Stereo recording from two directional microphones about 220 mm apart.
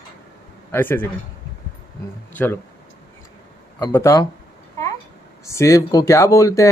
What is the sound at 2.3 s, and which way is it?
Speech, 10° left (ahead or behind).